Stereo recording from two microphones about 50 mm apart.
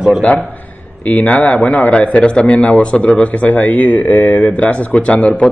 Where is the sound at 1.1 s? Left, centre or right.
Left.